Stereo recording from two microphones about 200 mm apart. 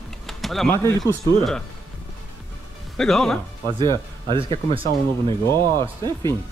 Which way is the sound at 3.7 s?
20° right (ahead or behind).